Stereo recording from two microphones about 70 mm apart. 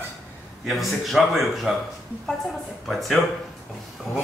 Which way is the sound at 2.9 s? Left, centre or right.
Centre.